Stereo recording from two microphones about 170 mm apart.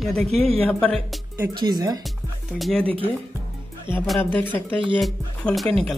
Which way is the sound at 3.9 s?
30° right (ahead or behind).